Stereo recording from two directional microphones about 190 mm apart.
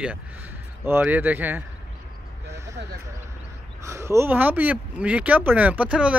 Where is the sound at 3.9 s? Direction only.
15° right (ahead or behind).